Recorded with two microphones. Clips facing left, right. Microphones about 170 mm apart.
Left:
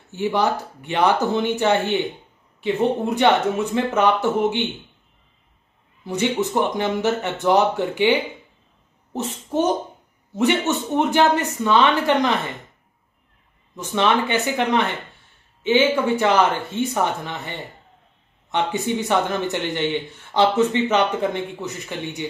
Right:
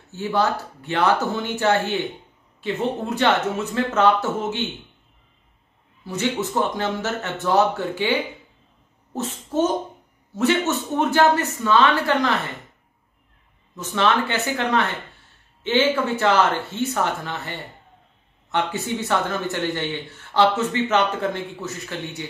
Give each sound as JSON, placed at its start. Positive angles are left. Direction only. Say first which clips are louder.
{"t": 0.1, "sound": "a man's voice", "louder": "left 1 dB", "side_deg": 15}
{"t": 6.0, "sound": "a man's voice", "louder": "left 3 dB", "side_deg": 15}
{"t": 9.1, "sound": "a child's voice", "louder": "left 1 dB", "side_deg": 15}
{"t": 11.0, "sound": "a man's voice", "louder": "even", "side_deg": 15}
{"t": 13.7, "sound": "a man's voice", "louder": "left 1 dB", "side_deg": 15}